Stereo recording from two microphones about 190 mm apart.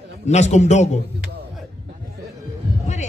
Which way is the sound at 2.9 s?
35° left (ahead or behind).